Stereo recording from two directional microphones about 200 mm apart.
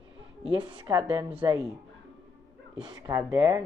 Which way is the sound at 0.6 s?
20° right (ahead or behind).